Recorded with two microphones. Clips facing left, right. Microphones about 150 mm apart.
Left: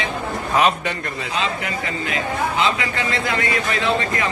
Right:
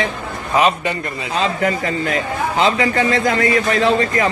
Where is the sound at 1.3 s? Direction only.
40° right (ahead or behind).